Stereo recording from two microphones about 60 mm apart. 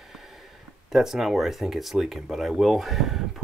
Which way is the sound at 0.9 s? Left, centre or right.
Centre.